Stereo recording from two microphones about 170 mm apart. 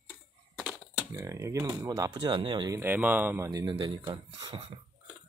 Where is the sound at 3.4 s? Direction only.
25° right (ahead or behind).